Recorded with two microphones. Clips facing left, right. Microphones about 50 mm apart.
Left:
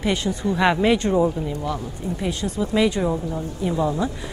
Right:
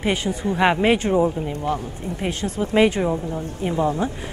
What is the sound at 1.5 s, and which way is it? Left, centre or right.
Speech, right.